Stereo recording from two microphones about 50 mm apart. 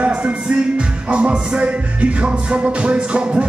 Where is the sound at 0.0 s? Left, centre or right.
Right.